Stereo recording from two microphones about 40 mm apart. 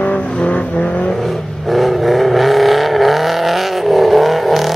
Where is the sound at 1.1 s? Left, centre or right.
Centre.